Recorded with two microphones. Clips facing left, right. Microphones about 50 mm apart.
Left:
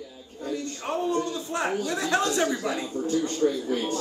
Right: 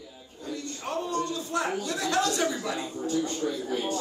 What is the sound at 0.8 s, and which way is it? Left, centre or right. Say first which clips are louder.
A man's voice: left 3 dB; left.